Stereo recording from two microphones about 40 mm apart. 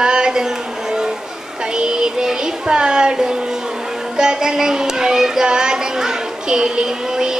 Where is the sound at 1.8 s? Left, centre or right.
Right.